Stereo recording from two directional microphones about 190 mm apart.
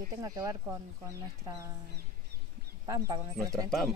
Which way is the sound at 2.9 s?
20° right (ahead or behind).